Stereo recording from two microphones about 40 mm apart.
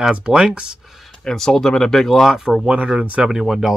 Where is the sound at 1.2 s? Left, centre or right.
Centre.